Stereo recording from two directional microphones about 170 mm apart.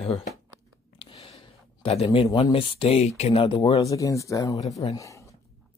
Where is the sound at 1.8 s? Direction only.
35° left (ahead or behind).